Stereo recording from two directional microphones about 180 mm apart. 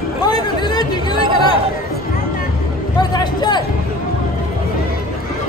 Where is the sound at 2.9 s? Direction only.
25° left (ahead or behind).